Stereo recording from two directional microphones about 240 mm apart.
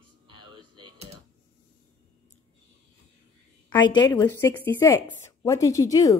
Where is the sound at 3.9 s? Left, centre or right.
Centre.